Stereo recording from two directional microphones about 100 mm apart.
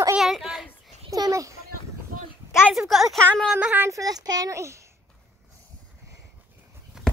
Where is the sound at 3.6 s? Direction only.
20° right (ahead or behind).